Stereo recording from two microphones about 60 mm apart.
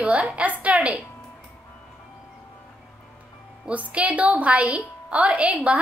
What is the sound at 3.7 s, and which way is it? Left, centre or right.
A woman's voice, right.